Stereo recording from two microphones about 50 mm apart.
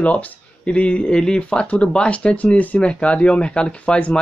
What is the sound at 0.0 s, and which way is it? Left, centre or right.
Speech, left.